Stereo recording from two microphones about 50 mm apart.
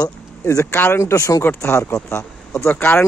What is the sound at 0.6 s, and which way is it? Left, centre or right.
Speech, left.